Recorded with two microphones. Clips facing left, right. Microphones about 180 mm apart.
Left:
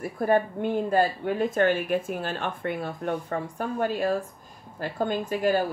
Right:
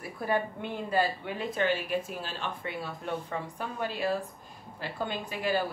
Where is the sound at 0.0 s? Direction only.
50° left (ahead or behind).